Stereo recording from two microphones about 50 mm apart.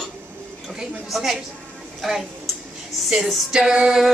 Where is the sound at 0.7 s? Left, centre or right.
Centre.